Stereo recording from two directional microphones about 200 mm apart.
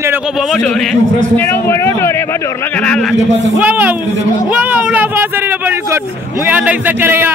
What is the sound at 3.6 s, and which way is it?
Speech, 10° right (ahead or behind).